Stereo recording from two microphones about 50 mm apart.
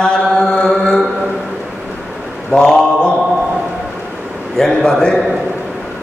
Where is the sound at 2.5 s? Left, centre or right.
Left.